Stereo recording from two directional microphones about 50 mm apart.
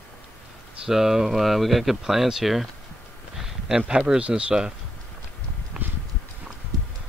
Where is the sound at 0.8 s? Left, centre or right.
Centre.